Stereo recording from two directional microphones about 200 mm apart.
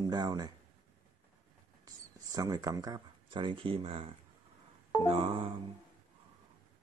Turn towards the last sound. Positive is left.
turn(degrees=-30)  # may be behind; listen again after turning